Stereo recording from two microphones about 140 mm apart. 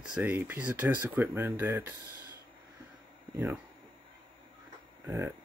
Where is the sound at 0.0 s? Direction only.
10° right (ahead or behind).